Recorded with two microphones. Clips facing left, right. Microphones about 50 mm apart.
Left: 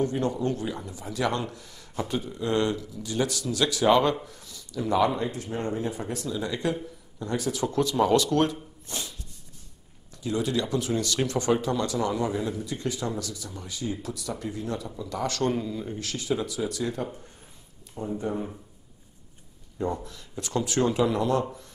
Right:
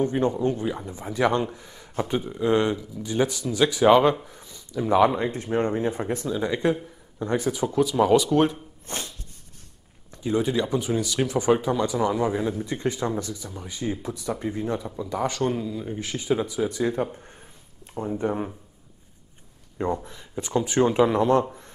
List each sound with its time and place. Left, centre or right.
0.0 s a man's voice: right
7.5 s speech: centre
8.8 s music: right
10.1 s a man's voice: right
15.4 s speech: centre
15.9 s a man's voice: centre; by 18.5 s right
19.8 s a man's voice: right